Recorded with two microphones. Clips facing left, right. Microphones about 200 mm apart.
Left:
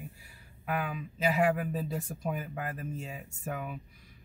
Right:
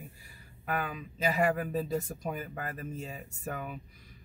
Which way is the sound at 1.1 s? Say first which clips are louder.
Left 1 dB; 5° left (ahead or behind).